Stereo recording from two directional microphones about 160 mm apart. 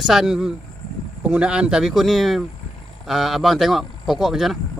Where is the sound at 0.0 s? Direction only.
Centre (ahead or behind).